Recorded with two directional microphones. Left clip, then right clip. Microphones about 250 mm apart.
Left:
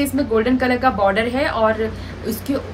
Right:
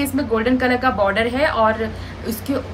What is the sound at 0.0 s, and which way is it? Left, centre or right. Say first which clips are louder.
A woman's voice: left 1 dB; centre.